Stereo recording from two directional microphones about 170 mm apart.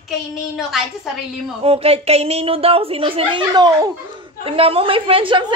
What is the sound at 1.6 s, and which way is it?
Speech, 35° right (ahead or behind).